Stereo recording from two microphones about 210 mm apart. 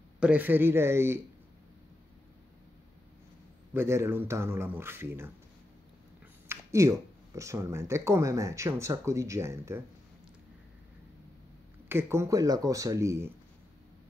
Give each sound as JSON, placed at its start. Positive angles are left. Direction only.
{"t": 0.2, "sound": "speech", "side_deg": -10}
{"t": 3.7, "sound": "speech", "side_deg": -10}
{"t": 6.5, "sound": "speech", "side_deg": -15}
{"t": 11.9, "sound": "speech", "side_deg": -10}